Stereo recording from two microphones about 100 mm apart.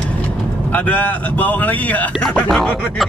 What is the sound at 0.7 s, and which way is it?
Speech, 15° left (ahead or behind).